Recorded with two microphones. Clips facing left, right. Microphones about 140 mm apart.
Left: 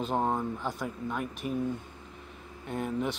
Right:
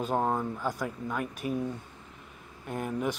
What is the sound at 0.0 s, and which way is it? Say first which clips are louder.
Speech: right 1 dB; 10° right (ahead or behind).